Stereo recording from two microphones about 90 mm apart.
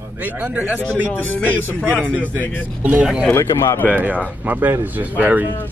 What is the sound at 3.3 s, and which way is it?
Speech, 30° left (ahead or behind).